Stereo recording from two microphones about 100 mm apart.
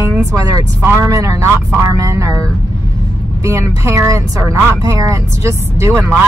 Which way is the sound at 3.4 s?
30° right (ahead or behind).